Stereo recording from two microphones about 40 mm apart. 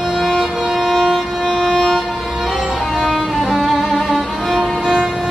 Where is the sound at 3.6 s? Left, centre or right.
Centre.